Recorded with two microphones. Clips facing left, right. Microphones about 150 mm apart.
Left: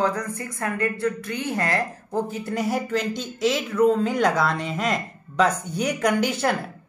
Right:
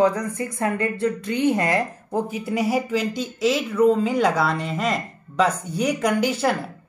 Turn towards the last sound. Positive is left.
turn(degrees=0)  # may be behind; listen again after turning